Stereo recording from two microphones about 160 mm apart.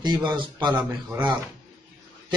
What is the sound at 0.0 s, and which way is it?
Speech, 25° right (ahead or behind).